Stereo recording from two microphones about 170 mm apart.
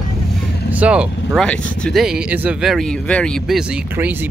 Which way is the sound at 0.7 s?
5° right (ahead or behind).